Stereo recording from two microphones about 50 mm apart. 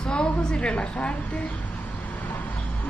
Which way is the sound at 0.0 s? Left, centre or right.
Left.